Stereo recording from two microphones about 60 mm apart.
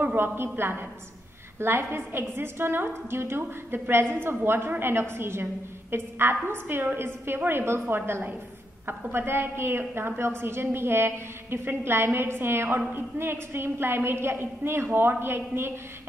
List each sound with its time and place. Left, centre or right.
0.0 s a woman's voice: right